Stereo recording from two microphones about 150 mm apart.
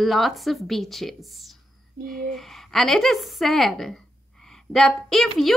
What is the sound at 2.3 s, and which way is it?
A woman's voice, centre (ahead or behind).